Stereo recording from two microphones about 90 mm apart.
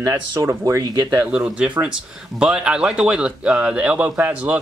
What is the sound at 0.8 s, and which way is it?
Speech, 50° right (ahead or behind).